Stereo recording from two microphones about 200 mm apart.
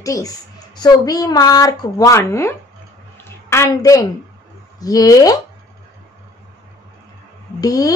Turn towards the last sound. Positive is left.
turn(degrees=20)  # may be behind; listen again after turning